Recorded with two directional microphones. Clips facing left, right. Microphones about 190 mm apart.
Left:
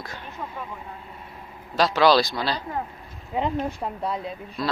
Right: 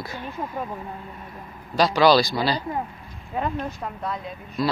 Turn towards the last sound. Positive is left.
turn(degrees=0)  # may be behind; listen again after turning